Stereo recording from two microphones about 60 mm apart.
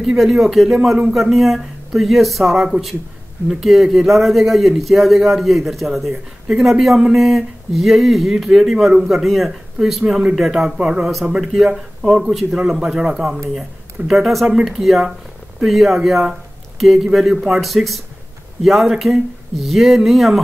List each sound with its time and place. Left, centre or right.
0.0 s a man's voice: centre
10.8 s speech: centre
11.7 s a man's voice: centre
17.6 s a man's voice: centre